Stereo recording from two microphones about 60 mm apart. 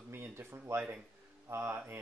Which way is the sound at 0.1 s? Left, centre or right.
Right.